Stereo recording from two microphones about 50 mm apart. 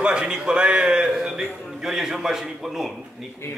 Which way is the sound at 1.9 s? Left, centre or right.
Centre.